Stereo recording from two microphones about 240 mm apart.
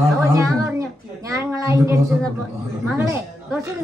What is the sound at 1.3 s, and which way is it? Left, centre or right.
Speech, centre.